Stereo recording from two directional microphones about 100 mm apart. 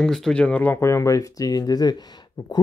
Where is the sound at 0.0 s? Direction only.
5° left (ahead or behind).